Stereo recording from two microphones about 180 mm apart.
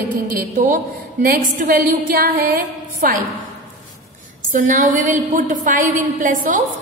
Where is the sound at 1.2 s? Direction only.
50° right (ahead or behind).